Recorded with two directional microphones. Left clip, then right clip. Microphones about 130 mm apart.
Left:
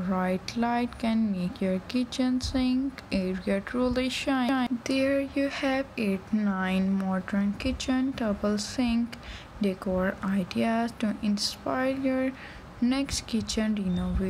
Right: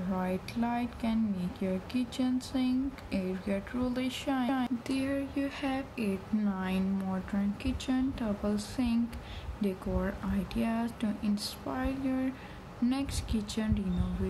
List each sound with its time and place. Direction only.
0.1 s speech: 40° left (ahead or behind)